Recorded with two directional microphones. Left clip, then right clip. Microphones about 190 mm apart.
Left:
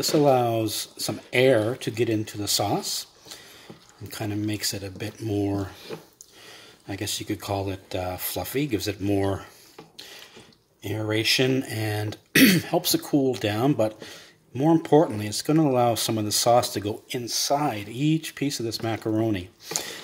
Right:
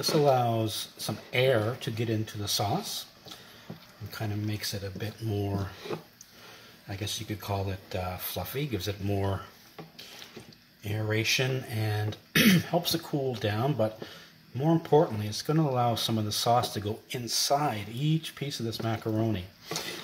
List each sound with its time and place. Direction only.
0.2 s speech: 40° left (ahead or behind)
4.1 s speech: 50° left (ahead or behind)
6.9 s speech: 50° left (ahead or behind)
10.8 s speech: 45° left (ahead or behind)